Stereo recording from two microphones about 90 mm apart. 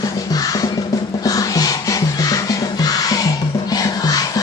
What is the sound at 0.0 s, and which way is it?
Music, 45° left (ahead or behind).